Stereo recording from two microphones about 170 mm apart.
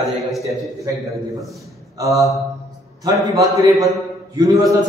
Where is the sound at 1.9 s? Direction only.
20° right (ahead or behind).